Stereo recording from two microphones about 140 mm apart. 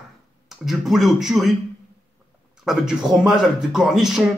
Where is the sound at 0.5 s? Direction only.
Centre (ahead or behind).